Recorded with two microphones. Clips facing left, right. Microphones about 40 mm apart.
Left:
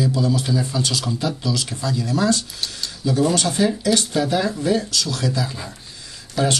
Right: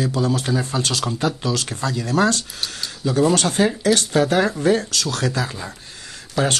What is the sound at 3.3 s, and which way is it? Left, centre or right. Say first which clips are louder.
Speech: right 1 dB; right.